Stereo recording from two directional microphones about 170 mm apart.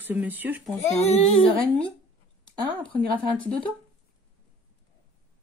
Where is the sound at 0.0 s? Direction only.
10° right (ahead or behind).